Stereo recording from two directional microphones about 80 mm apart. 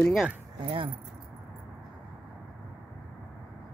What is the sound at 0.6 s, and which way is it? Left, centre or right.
Speech, right.